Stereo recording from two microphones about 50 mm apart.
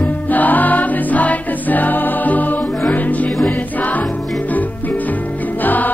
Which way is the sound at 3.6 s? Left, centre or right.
Left.